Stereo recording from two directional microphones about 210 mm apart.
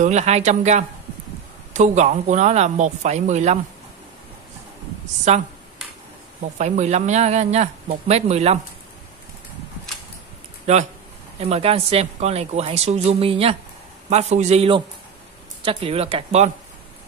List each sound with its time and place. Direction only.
0.0 s speech: 35° right (ahead or behind)
5.3 s speech: 35° right (ahead or behind)
6.6 s speech: 35° right (ahead or behind)
10.7 s speech: 30° right (ahead or behind)